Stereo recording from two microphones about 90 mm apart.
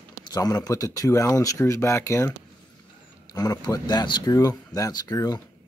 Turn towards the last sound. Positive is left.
turn(degrees=45)  # may be behind; listen again after turning